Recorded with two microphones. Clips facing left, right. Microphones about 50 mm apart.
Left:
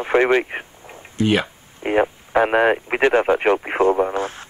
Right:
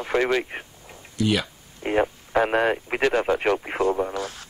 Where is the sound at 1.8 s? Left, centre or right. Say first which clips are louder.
Left 4 dB; centre.